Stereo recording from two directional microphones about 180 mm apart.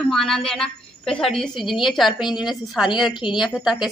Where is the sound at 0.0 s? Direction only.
Centre (ahead or behind).